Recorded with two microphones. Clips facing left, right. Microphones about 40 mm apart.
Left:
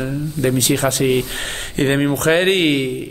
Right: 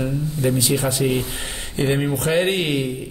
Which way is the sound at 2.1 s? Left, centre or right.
Left.